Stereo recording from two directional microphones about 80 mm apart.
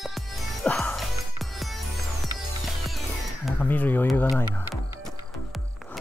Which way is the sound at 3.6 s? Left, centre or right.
Left.